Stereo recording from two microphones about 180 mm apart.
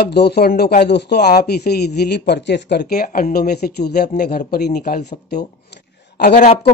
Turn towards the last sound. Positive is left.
turn(degrees=45)  # may be behind; listen again after turning